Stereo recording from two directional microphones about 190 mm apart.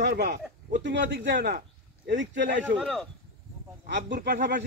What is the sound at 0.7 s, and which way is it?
Speech, 70° right (ahead or behind).